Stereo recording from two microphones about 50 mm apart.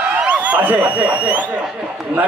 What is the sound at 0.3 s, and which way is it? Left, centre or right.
A man's voice, right.